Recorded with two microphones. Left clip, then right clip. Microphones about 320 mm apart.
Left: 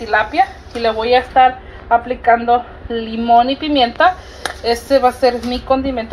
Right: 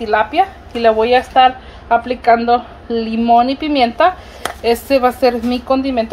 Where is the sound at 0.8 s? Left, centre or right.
Right.